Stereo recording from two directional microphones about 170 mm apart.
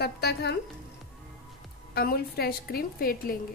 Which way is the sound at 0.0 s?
75° left (ahead or behind).